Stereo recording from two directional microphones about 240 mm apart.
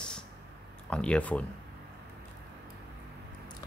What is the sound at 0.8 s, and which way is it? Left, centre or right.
Speech, centre.